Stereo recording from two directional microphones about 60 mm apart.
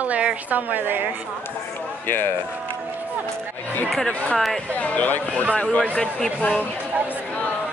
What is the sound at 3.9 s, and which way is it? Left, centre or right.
Speech, centre.